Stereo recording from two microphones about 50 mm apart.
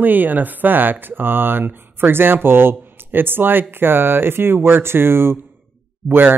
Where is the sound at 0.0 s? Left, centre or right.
Right.